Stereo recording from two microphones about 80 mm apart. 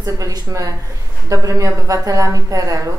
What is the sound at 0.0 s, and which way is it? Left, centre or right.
A woman's voice, right.